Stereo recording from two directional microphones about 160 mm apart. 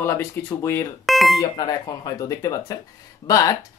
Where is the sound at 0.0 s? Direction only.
15° left (ahead or behind).